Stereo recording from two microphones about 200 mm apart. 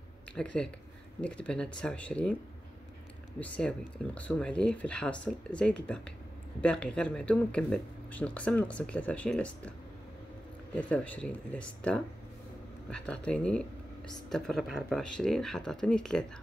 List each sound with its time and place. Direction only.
0.3 s speech: 5° left (ahead or behind)
3.5 s speech: 5° left (ahead or behind)